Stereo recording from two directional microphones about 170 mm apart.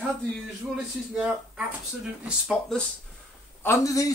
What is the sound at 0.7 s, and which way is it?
Speech, 5° right (ahead or behind).